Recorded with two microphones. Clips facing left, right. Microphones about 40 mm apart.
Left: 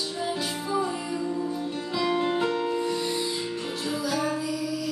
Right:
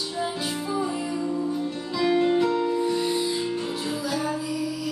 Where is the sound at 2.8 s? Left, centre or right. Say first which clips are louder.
Right 3 dB; centre.